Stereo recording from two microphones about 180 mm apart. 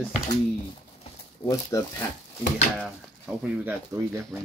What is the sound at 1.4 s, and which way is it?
Speech, 20° left (ahead or behind).